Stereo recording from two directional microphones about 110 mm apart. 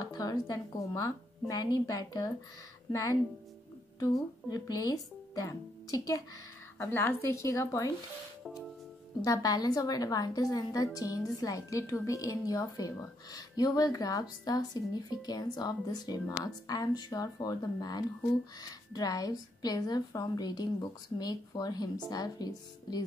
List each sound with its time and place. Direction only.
0.0 s speech: 35° left (ahead or behind)
4.5 s speech: 35° left (ahead or behind)
6.8 s speech: 20° left (ahead or behind)
9.2 s speech: 35° left (ahead or behind)